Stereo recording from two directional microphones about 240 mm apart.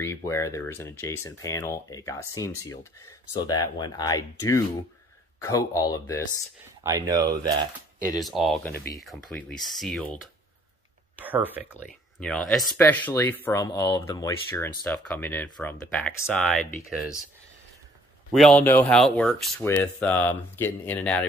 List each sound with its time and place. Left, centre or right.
0.0 s speech: centre
6.8 s speech: centre
8.2 s speech: centre
11.2 s speech: centre
12.2 s speech: centre
18.3 s speech: centre